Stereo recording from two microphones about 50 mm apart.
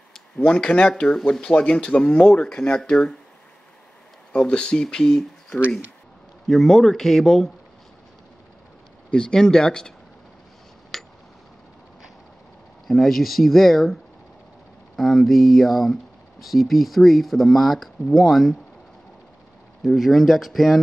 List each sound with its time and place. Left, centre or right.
0.4 s speech: centre
4.3 s speech: centre
9.1 s speech: centre
10.9 s a sound: centre
12.8 s speech: centre
15.0 s speech: centre
19.8 s speech: centre